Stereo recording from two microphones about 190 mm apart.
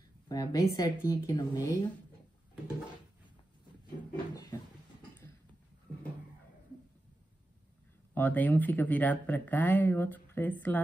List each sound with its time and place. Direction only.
0.3 s speech: 20° left (ahead or behind)
8.1 s speech: 10° left (ahead or behind)